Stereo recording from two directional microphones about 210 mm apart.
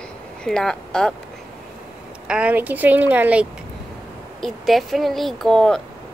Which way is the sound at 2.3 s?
5° right (ahead or behind).